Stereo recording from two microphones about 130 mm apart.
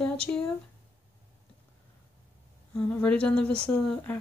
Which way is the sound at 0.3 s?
15° left (ahead or behind).